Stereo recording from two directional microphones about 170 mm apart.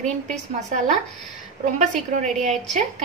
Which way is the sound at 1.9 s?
45° right (ahead or behind).